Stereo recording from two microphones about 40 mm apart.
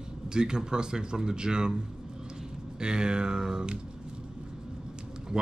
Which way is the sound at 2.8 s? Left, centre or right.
Right.